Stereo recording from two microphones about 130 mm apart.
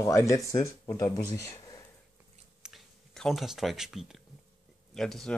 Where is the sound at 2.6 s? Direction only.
Centre (ahead or behind).